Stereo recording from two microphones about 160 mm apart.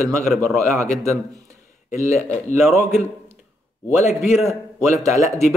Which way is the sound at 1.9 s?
15° right (ahead or behind).